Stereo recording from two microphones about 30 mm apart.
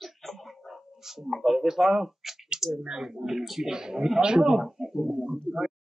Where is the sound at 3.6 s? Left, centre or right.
Right.